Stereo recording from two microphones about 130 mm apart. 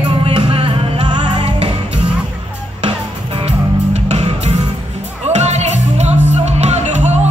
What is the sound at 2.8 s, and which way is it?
Music, 50° right (ahead or behind).